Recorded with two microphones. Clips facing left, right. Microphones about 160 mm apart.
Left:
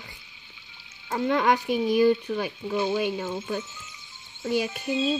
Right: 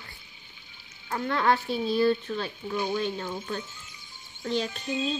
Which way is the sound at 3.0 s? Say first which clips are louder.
Left 3 dB; 10° left (ahead or behind).